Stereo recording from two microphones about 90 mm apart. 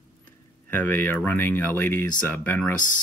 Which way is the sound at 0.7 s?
20° left (ahead or behind).